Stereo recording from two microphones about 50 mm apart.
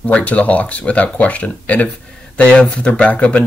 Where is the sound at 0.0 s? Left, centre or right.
Left.